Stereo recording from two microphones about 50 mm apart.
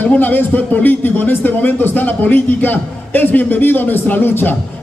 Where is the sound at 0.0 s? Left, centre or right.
Left.